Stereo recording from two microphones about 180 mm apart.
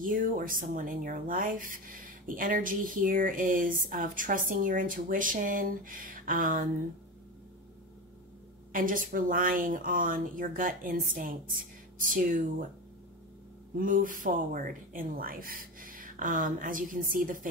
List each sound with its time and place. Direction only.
0.0 s speech: 50° right (ahead or behind)
8.7 s speech: 50° right (ahead or behind)
13.7 s speech: 50° right (ahead or behind)